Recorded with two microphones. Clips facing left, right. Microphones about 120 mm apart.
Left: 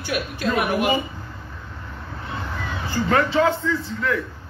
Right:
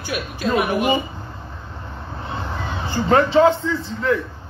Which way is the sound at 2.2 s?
30° right (ahead or behind).